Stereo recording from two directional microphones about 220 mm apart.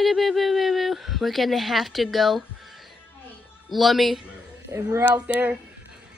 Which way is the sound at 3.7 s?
Centre (ahead or behind).